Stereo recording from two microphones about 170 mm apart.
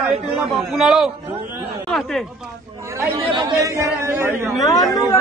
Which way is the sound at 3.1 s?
30° right (ahead or behind).